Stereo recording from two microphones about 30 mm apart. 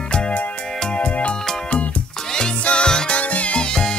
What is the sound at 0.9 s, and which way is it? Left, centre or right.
Music, left.